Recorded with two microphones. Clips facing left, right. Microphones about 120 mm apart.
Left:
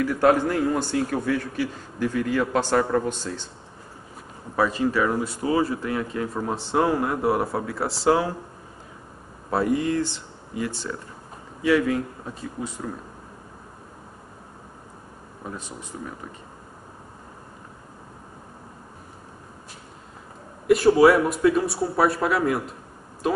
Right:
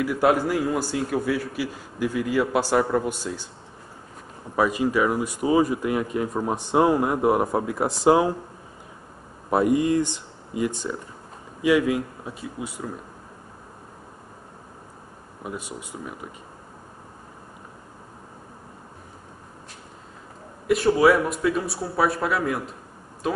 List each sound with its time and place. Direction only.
0.0 s speech: 10° right (ahead or behind)
4.6 s speech: 15° right (ahead or behind)
9.5 s speech: 20° right (ahead or behind)
15.4 s speech: 10° right (ahead or behind)
20.6 s speech: centre (ahead or behind)